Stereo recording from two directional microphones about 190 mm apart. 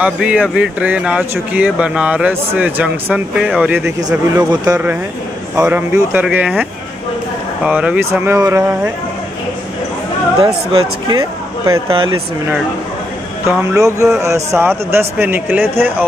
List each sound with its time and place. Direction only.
0.0 s speech: 5° right (ahead or behind)
10.4 s speech: 20° right (ahead or behind)
13.5 s speech: 15° right (ahead or behind)